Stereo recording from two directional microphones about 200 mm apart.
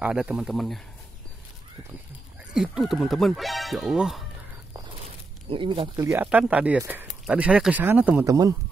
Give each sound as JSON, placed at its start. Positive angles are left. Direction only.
{"t": 0.0, "sound": "speech", "side_deg": -5}
{"t": 2.5, "sound": "speech", "side_deg": -5}
{"t": 5.5, "sound": "speech", "side_deg": -25}